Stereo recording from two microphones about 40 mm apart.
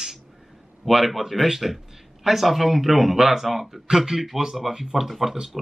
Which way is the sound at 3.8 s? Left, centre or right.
Centre.